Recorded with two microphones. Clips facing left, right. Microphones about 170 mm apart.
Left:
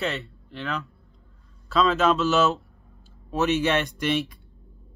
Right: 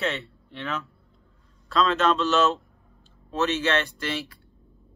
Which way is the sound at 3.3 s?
15° left (ahead or behind).